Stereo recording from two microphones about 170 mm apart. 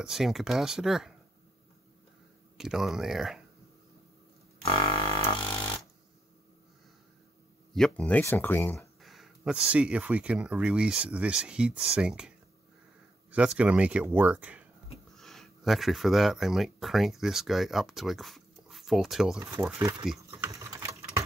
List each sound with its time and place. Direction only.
0.0 s speech: centre (ahead or behind)
2.5 s speech: centre (ahead or behind)
4.6 s music: 30° left (ahead or behind)
7.7 s speech: 5° left (ahead or behind)
9.0 s a sound: centre (ahead or behind)
9.7 s speech: 5° right (ahead or behind)
13.6 s speech: 5° right (ahead or behind)
20.2 s typing: 15° right (ahead or behind)